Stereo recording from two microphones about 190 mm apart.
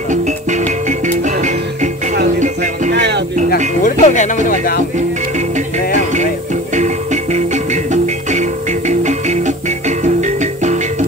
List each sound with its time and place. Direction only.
0.1 s music: 40° right (ahead or behind)
2.9 s music: 65° right (ahead or behind)
3.8 s music: 40° left (ahead or behind)
5.9 s music: 40° right (ahead or behind)